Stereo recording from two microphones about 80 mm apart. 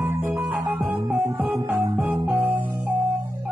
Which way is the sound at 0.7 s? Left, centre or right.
Right.